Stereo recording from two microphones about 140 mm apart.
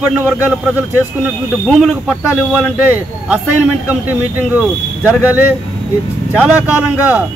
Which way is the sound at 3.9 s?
10° right (ahead or behind).